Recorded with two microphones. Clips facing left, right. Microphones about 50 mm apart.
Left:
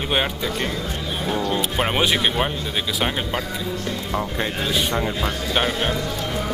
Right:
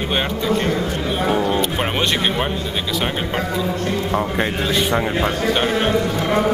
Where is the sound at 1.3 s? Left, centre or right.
Centre.